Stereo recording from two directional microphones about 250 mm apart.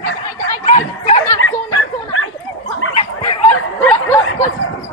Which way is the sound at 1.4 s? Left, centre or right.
Left.